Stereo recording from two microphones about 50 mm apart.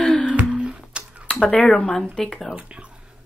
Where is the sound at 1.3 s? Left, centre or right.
Left.